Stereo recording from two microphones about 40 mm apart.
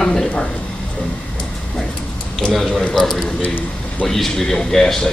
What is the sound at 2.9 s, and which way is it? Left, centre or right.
A man's voice, centre.